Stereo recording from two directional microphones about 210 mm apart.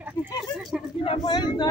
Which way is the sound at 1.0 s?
25° left (ahead or behind).